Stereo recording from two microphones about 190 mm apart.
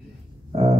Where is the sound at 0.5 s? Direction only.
30° right (ahead or behind).